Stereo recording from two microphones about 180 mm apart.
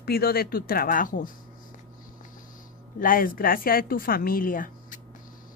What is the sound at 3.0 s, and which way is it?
A woman's voice, 50° left (ahead or behind).